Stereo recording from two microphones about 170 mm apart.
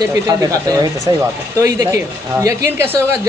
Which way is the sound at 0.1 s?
20° right (ahead or behind).